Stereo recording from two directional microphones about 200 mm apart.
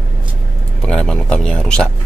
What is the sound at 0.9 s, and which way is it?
Speech, 5° left (ahead or behind).